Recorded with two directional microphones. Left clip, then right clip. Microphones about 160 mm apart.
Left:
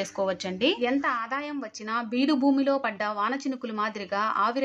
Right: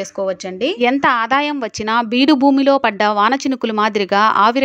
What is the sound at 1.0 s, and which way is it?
A woman's voice, 60° right (ahead or behind).